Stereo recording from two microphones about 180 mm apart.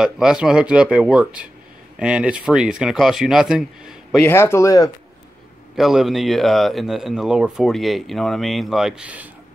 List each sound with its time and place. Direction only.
0.0 s speech: 5° right (ahead or behind)
4.2 s speech: 15° left (ahead or behind)
5.8 s speech: centre (ahead or behind)